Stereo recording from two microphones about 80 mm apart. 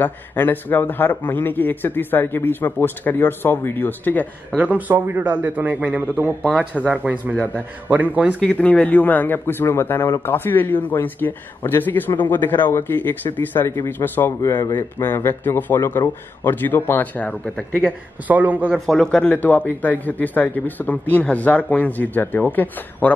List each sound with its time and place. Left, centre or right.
0.0 s a man's voice: left
4.6 s a man's voice: centre
6.8 s speech: centre
7.9 s a man's voice: right
8.4 s a man's voice: centre
14.4 s a man's voice: left; by 17.9 s centre
18.2 s a man's voice: right
18.9 s a man's voice: centre